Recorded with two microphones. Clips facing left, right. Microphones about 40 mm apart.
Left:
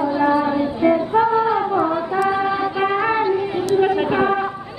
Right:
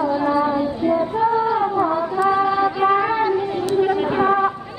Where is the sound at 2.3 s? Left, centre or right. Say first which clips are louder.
Right 2 dB; centre.